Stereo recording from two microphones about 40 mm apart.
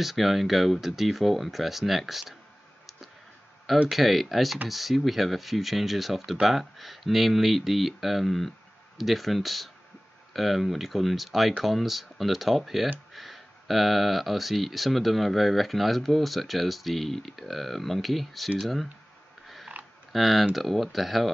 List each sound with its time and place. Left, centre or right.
0.0 s speech: centre
3.9 s speech: centre
19.7 s a sound: right
20.1 s speech: centre